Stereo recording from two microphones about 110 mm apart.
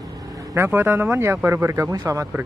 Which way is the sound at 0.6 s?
20° right (ahead or behind).